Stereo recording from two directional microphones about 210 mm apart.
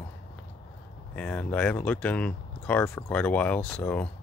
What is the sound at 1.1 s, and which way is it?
Speech, 5° left (ahead or behind).